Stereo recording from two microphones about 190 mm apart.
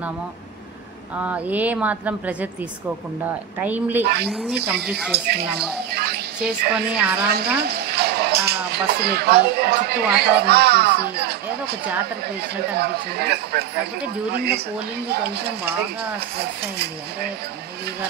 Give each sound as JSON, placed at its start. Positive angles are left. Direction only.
{"t": 1.1, "sound": "a woman's voice", "side_deg": -10}
{"t": 5.1, "sound": "speech", "side_deg": -60}
{"t": 5.5, "sound": "speech", "side_deg": -5}
{"t": 5.9, "sound": "a sound", "side_deg": -60}
{"t": 7.2, "sound": "speech", "side_deg": -60}
{"t": 15.6, "sound": "a woman's voice", "side_deg": -10}
{"t": 16.7, "sound": "speech", "side_deg": -55}